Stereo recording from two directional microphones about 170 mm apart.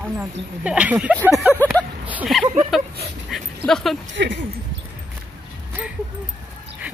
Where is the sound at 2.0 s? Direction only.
10° right (ahead or behind).